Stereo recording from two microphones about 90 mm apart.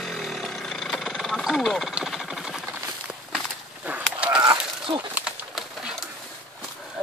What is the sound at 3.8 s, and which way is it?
Livestock, 15° right (ahead or behind).